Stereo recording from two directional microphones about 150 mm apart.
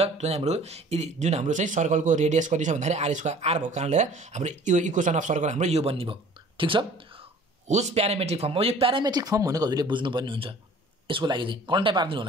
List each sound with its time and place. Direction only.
0.0 s speech: 45° right (ahead or behind)
7.6 s speech: 50° right (ahead or behind); by 12.3 s 30° right (ahead or behind)